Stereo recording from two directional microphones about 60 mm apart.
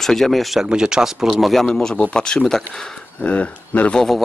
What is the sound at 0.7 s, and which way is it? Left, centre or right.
Speech, centre.